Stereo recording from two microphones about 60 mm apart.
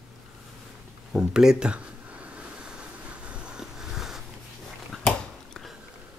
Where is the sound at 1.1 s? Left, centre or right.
Centre.